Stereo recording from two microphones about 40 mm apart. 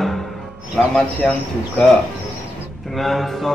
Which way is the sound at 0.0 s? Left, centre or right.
Centre.